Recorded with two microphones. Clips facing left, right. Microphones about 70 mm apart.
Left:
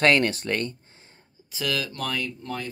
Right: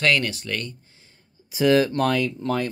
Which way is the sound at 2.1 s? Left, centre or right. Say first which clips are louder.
Right 8 dB; right.